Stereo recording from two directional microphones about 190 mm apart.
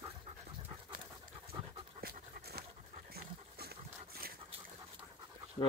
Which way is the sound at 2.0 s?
55° right (ahead or behind).